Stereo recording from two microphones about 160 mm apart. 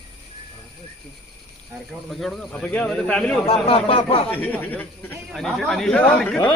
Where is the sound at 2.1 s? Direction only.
Centre (ahead or behind).